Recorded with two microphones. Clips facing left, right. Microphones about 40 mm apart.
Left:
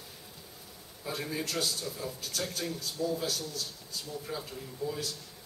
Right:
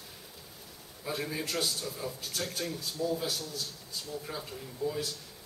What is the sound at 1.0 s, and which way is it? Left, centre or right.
A man's voice, centre.